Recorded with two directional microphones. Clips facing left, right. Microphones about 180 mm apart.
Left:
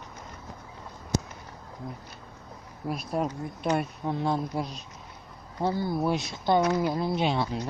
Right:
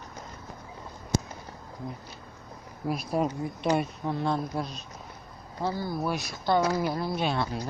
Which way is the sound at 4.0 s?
10° left (ahead or behind).